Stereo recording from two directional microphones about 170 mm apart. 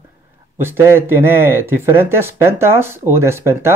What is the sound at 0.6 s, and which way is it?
Speech, 15° right (ahead or behind).